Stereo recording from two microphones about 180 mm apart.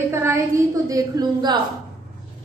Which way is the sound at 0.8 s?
20° right (ahead or behind).